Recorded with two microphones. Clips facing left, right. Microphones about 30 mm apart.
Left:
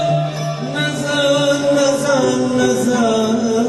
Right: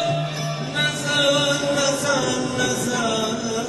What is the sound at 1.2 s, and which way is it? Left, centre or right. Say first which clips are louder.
Chant: left 5 dB; right.